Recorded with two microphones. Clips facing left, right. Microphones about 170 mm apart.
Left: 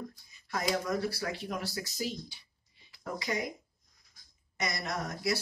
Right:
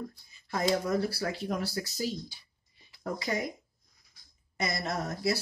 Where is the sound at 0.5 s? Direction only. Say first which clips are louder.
Right 3 dB; 30° right (ahead or behind).